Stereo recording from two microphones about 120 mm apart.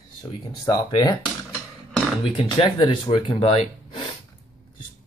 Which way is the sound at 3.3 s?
60° left (ahead or behind).